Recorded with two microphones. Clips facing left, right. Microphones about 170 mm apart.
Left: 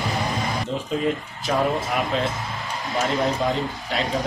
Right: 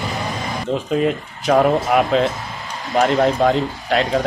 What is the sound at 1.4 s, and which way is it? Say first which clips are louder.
Speech: right 8 dB; 65° right (ahead or behind).